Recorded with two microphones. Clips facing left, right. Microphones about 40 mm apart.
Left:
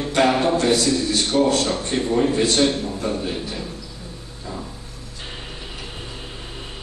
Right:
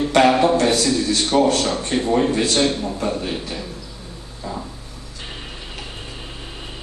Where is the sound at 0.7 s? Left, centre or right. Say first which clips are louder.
Right 1 dB; right.